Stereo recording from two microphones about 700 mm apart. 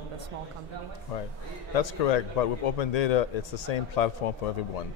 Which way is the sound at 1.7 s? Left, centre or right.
Left.